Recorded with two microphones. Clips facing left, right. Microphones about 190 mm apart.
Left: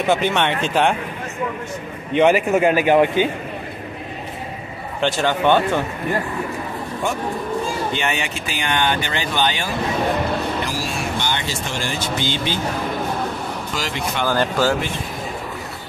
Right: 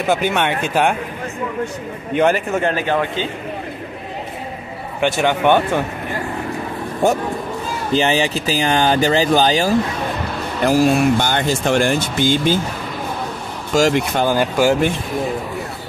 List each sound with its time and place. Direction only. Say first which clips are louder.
0.0 s speech: right 1 dB; 5° right (ahead or behind)
2.1 s a man's voice: left 2 dB; 5° left (ahead or behind)
5.0 s speech: right 2 dB; 15° right (ahead or behind)
7.9 s speech: right 7 dB; 35° right (ahead or behind)
10.7 s speech: right 12 dB; 55° right (ahead or behind)
13.7 s speech: right 12 dB; 45° right (ahead or behind)
14.2 s speech: right 2 dB; 15° right (ahead or behind)